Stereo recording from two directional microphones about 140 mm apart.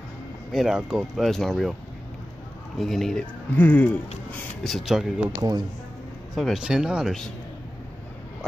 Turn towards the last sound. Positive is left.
turn(degrees=-5)  # may be behind; listen again after turning